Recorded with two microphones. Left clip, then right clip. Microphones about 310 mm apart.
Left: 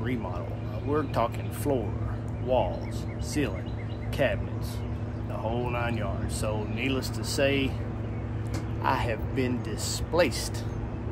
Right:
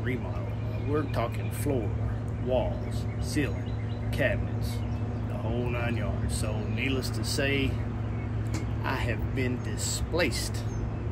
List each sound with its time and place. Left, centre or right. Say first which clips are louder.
0.9 s speech: left 3 dB; centre
5.6 s speech: left 2 dB; centre
8.8 s speech: left 5 dB; centre